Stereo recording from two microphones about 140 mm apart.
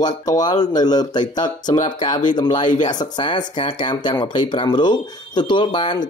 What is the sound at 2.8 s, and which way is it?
Speech, 30° left (ahead or behind).